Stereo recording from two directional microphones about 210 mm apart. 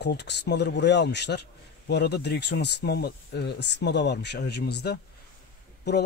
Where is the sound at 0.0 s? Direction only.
55° left (ahead or behind).